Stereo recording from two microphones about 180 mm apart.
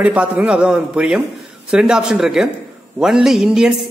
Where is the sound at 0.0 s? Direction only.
5° right (ahead or behind).